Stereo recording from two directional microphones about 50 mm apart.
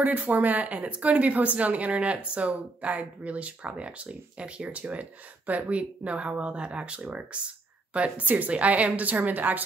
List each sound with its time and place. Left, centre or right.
0.0 s a woman's voice: right